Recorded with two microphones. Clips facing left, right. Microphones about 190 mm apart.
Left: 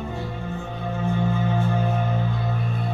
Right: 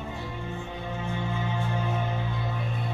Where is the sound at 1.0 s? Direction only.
45° left (ahead or behind).